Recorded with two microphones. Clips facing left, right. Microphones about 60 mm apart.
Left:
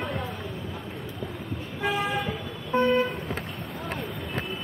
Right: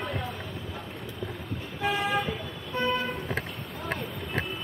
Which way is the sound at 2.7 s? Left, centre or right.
Left.